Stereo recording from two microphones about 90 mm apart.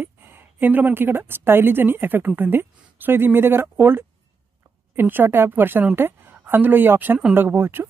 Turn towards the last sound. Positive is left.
turn(degrees=-25)  # may be behind; listen again after turning